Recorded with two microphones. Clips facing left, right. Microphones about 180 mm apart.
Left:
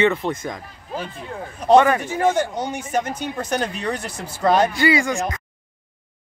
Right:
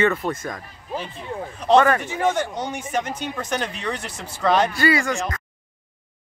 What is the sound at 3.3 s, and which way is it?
Speech, 40° left (ahead or behind).